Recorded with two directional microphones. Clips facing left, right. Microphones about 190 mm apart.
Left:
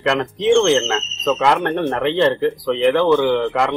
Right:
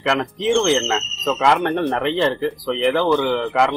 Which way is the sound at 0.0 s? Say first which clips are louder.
Left 2 dB; centre (ahead or behind).